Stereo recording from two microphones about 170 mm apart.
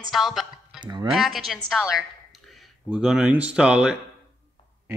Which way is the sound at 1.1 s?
Centre (ahead or behind).